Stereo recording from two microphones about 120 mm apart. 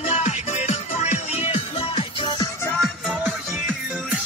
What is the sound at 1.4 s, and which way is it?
Music, 55° left (ahead or behind).